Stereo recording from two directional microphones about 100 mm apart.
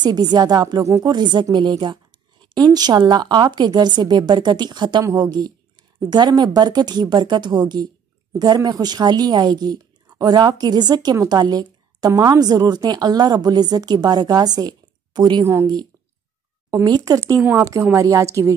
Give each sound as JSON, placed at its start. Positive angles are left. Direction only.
{"t": 0.0, "sound": "a woman's voice", "side_deg": -45}
{"t": 17.4, "sound": "a woman's voice", "side_deg": -15}
{"t": 17.9, "sound": "speech", "side_deg": -35}